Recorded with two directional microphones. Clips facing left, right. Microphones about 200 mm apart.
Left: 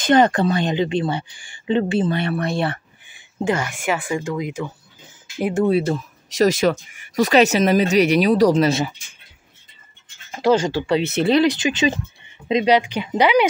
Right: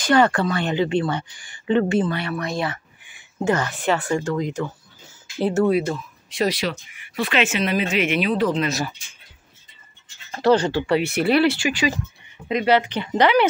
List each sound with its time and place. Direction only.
0.0 s speech: 20° left (ahead or behind)
3.4 s speech: 15° left (ahead or behind)
5.7 s speech: 30° left (ahead or behind)
10.3 s speech: 10° left (ahead or behind)